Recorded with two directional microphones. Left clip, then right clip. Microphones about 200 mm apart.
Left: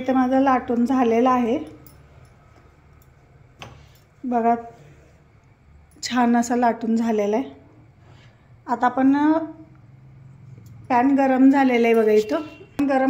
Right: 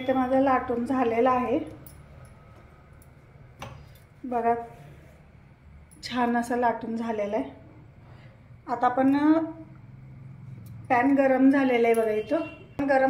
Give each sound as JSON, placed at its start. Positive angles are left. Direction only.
{"t": 0.0, "sound": "a woman's voice", "side_deg": 60}
{"t": 4.3, "sound": "a woman's voice", "side_deg": 50}
{"t": 5.9, "sound": "a woman's voice", "side_deg": 55}
{"t": 8.6, "sound": "a woman's voice", "side_deg": 50}
{"t": 10.9, "sound": "a woman's voice", "side_deg": 50}